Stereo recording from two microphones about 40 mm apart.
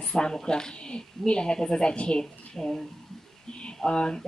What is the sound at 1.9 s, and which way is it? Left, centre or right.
Speech, left.